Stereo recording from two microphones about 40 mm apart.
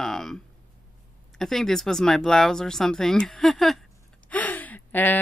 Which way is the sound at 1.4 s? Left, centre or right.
Centre.